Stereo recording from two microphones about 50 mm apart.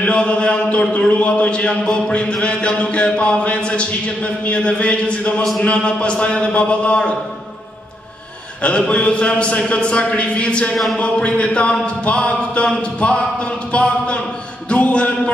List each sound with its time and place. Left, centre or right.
0.0 s a man's voice: left
8.6 s a man's voice: left